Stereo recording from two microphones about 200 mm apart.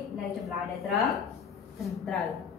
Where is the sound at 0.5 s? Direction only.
Centre (ahead or behind).